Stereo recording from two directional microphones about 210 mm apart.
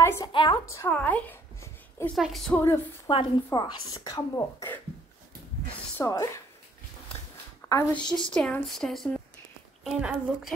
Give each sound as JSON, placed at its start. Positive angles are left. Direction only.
{"t": 0.0, "sound": "a sound", "side_deg": 10}
{"t": 0.3, "sound": "a woman's voice", "side_deg": 25}
{"t": 0.7, "sound": "a sound", "side_deg": 10}
{"t": 2.1, "sound": "speech", "side_deg": 0}
{"t": 3.1, "sound": "a woman's voice", "side_deg": 20}
{"t": 5.9, "sound": "speech", "side_deg": 15}
{"t": 7.6, "sound": "speech", "side_deg": 10}